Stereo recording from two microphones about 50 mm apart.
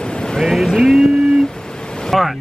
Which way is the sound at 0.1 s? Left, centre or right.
Centre.